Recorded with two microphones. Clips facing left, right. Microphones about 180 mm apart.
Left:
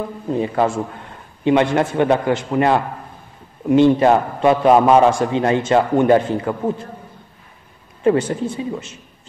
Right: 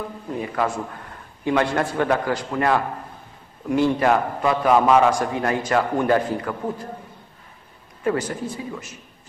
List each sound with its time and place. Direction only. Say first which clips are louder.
0.3 s a man's voice: left 6 dB; 25° left (ahead or behind)
8.0 s a man's voice: left 7 dB; 25° left (ahead or behind)